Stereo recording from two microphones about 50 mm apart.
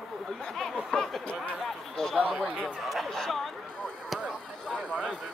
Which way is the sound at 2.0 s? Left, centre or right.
Centre.